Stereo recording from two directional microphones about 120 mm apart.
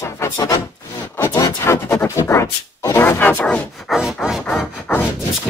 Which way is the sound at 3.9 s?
5° right (ahead or behind).